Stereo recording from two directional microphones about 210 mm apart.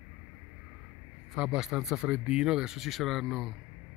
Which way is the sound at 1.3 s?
Centre (ahead or behind).